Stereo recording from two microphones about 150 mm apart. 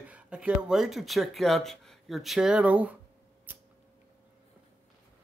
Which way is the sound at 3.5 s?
10° right (ahead or behind).